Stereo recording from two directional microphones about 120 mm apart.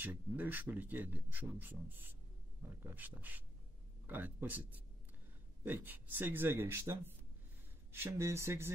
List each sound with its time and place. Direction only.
0.0 s speech: 15° right (ahead or behind)